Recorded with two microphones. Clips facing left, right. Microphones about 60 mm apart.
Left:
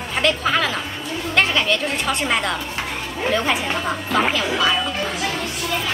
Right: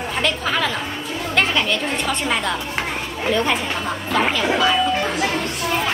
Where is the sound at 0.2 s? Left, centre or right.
Centre.